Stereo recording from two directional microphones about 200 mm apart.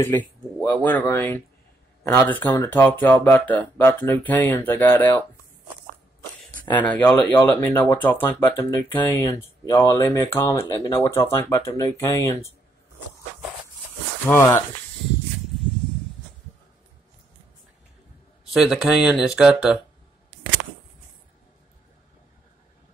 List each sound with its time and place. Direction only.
0.0 s speech: 10° left (ahead or behind)
6.7 s speech: 5° left (ahead or behind)
14.2 s speech: 10° left (ahead or behind)
18.5 s speech: centre (ahead or behind)